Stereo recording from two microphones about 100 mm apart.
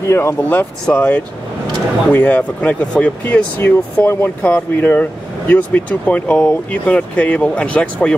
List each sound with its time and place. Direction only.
0.0 s speech: 25° left (ahead or behind)